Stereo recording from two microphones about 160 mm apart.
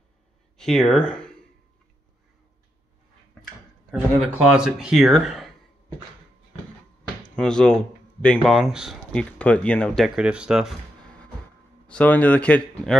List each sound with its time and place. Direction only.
0.6 s speech: centre (ahead or behind)
3.9 s speech: 5° right (ahead or behind)
7.3 s speech: 5° left (ahead or behind)
10.0 s speech: 5° right (ahead or behind)
11.9 s speech: 10° left (ahead or behind)